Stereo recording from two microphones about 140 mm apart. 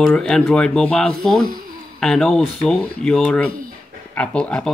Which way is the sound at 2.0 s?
5° left (ahead or behind).